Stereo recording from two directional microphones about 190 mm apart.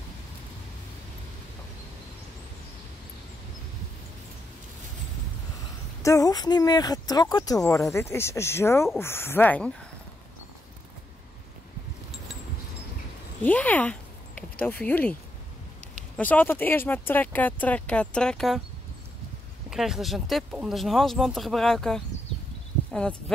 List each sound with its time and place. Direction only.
6.0 s speech: 20° left (ahead or behind)
13.4 s speech: 10° left (ahead or behind)
16.2 s speech: 10° left (ahead or behind)
19.7 s speech: centre (ahead or behind)